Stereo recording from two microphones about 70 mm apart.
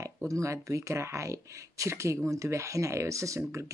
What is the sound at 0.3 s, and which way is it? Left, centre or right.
Speech, right.